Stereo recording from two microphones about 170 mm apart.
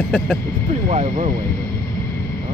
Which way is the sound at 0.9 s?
45° right (ahead or behind).